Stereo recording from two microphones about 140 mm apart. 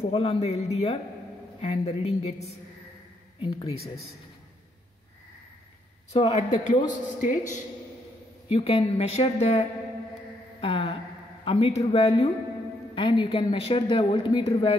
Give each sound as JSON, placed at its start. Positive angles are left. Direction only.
{"t": 0.0, "sound": "a woman's voice", "side_deg": 45}
{"t": 6.1, "sound": "a woman's voice", "side_deg": 55}
{"t": 8.5, "sound": "speech", "side_deg": 40}
{"t": 12.9, "sound": "a woman's voice", "side_deg": 35}